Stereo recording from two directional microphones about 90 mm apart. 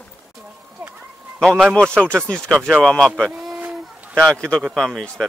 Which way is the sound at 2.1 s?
25° right (ahead or behind).